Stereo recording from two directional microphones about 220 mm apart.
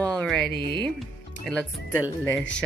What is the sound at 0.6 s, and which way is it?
Speech, 20° right (ahead or behind).